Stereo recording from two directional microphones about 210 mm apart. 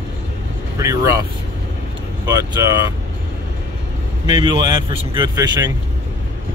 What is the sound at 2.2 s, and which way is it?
Speech, 15° right (ahead or behind).